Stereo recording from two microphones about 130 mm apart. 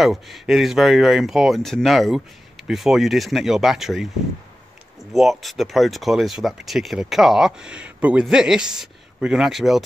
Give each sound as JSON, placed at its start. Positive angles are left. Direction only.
{"t": 0.0, "sound": "speech", "side_deg": 0}
{"t": 5.1, "sound": "speech", "side_deg": 0}